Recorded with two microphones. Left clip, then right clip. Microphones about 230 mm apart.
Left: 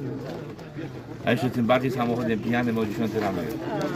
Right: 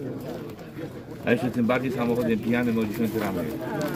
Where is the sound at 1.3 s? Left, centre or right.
Left.